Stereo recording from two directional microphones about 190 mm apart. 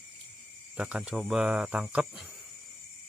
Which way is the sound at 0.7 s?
5° right (ahead or behind).